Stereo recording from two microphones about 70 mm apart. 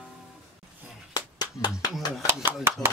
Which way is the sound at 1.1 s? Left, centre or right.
Left.